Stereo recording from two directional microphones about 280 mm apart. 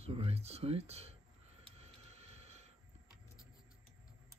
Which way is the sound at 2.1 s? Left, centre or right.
Right.